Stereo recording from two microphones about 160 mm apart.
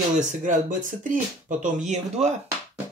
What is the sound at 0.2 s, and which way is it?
Speech, 50° right (ahead or behind).